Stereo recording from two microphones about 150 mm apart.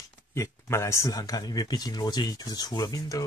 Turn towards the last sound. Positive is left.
turn(degrees=25)  # may be behind; listen again after turning